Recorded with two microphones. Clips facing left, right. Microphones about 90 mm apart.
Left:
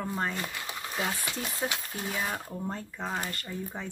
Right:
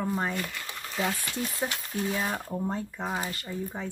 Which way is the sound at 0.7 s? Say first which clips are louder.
Right 3 dB; 10° left (ahead or behind).